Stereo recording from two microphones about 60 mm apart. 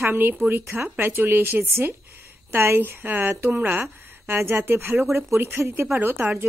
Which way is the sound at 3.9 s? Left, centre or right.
Right.